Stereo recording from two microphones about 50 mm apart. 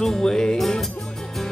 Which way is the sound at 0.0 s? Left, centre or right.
Centre.